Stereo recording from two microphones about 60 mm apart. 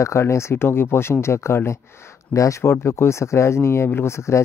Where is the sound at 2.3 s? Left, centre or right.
Left.